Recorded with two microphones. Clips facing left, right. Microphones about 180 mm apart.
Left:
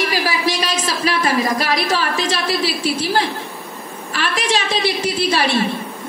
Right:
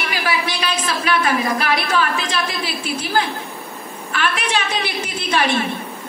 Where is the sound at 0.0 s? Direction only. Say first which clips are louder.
Left 3 dB; 35° left (ahead or behind).